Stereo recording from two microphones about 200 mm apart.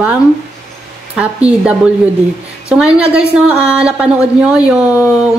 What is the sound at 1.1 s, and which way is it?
Speech, 5° right (ahead or behind).